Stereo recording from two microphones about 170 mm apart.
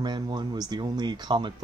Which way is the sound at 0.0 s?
25° right (ahead or behind).